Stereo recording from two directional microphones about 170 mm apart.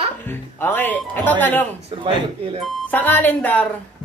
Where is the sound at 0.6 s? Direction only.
10° left (ahead or behind).